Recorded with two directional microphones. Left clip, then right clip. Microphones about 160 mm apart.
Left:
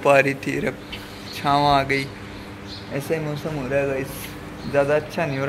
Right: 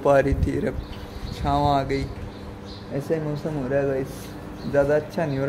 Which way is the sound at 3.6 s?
25° right (ahead or behind).